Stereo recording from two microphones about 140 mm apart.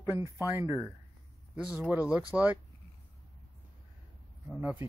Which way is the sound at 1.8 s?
10° right (ahead or behind).